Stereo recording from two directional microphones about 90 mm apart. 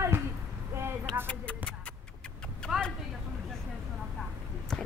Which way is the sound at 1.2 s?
15° left (ahead or behind).